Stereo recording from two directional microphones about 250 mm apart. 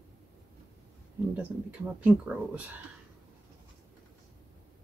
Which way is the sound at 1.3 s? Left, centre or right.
Centre.